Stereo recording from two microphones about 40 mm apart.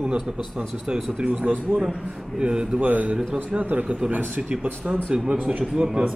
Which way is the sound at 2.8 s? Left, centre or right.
Right.